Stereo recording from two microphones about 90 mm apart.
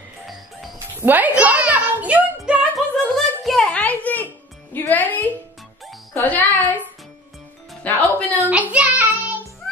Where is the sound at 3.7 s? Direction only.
15° left (ahead or behind).